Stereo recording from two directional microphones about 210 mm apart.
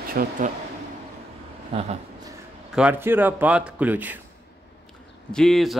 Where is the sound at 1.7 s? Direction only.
30° right (ahead or behind).